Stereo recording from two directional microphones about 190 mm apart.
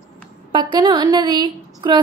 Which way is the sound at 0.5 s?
25° right (ahead or behind).